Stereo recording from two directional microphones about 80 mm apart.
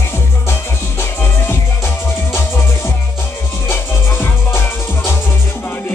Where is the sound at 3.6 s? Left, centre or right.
Left.